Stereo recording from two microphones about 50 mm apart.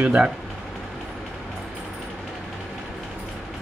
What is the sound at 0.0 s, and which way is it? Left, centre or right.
Speech, right.